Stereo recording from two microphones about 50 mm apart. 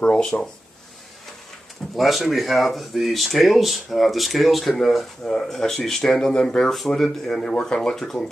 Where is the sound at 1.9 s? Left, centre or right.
Centre.